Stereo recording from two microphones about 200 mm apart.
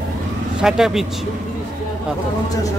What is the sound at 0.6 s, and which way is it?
Speech, 5° right (ahead or behind).